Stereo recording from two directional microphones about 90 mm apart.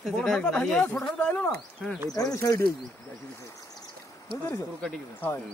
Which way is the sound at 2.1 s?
40° left (ahead or behind).